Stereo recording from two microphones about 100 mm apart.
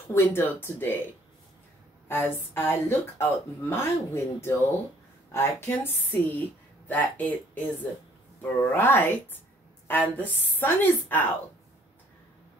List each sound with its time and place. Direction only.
0.1 s speech: 25° left (ahead or behind)
2.0 s speech: 20° left (ahead or behind)